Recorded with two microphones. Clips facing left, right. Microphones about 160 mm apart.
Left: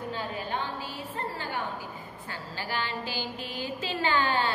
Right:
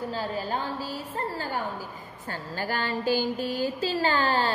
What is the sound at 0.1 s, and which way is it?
A woman's voice, 35° right (ahead or behind).